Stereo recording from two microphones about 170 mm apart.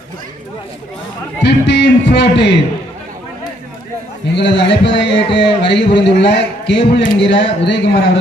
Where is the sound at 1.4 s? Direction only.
85° left.